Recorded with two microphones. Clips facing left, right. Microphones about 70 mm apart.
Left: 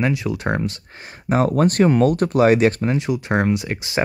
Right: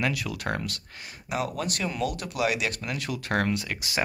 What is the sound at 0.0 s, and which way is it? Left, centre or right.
Speech, left.